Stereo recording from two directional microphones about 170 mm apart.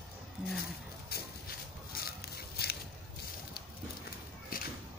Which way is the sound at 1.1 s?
70° left (ahead or behind).